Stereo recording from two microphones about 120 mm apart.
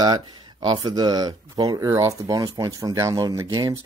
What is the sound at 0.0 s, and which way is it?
Speech, 35° right (ahead or behind).